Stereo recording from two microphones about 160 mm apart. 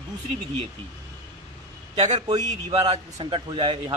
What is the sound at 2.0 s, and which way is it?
A man's voice, 40° right (ahead or behind).